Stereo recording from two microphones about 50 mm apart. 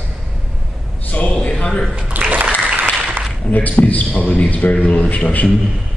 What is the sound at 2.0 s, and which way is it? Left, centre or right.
Speech, right.